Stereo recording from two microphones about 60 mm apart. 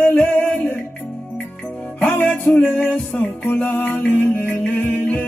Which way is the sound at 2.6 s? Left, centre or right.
Left.